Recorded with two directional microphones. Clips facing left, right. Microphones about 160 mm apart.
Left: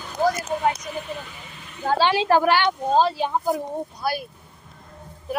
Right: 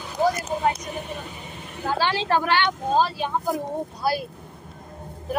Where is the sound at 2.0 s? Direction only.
15° left (ahead or behind).